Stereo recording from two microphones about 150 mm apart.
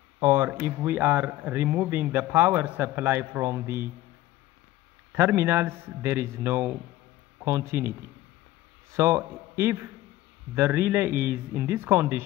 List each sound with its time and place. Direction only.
0.2 s speech: 15° right (ahead or behind)
5.1 s speech: 15° right (ahead or behind)
8.9 s speech: 20° right (ahead or behind)